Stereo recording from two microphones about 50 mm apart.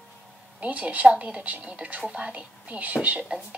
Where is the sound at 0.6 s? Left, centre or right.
Right.